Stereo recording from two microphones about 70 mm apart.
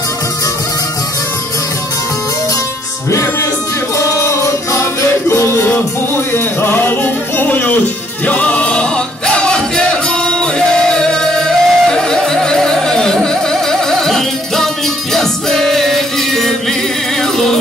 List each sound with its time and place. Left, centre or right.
4.0 s music: left; by 16.5 s centre